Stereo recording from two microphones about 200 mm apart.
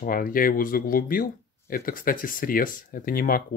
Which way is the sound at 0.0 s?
45° left (ahead or behind).